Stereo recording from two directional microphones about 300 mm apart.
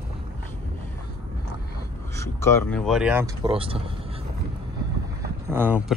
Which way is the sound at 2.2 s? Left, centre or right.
Centre.